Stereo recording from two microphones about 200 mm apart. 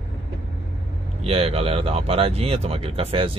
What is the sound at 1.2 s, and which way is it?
Speech, 30° right (ahead or behind).